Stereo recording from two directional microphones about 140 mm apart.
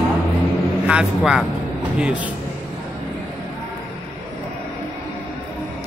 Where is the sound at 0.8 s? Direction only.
5° right (ahead or behind).